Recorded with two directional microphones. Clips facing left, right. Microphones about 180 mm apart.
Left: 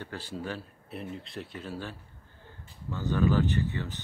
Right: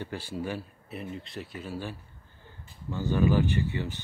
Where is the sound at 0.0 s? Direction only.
10° right (ahead or behind).